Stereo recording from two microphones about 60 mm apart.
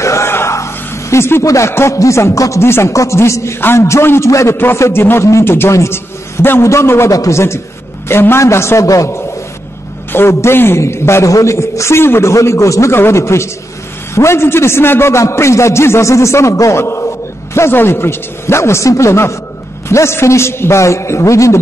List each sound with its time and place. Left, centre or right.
0.0 s a sound: left
1.1 s a man's voice: left
1.4 s a man's voice: left
1.7 s a man's voice: left
2.0 s a man's voice: left
5.4 s a man's voice: left
5.7 s a man's voice: left
6.6 s a man's voice: left
7.1 s a man's voice: left
8.8 s a man's voice: left
10.1 s a man's voice: left
11.2 s a man's voice: left
12.9 s a man's voice: left